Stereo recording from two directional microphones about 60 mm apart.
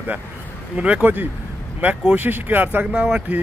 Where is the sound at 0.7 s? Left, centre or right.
Centre.